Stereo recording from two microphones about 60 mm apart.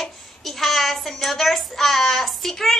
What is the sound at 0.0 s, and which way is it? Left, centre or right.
A child's voice, centre.